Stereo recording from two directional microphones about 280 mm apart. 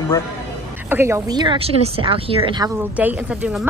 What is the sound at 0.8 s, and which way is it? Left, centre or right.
Speech, centre.